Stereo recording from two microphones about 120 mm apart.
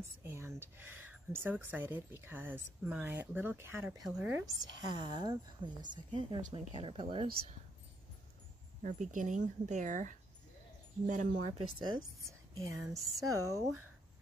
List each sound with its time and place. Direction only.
0.2 s speech: 20° right (ahead or behind)
4.0 s speech: 10° right (ahead or behind)
4.6 s a woman's voice: 40° right (ahead or behind)
8.8 s speech: 90° right
11.8 s a woman's voice: 40° right (ahead or behind)
12.3 s speech: 25° right (ahead or behind)